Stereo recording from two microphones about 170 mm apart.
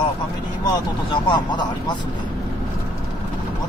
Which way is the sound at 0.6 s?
25° left (ahead or behind).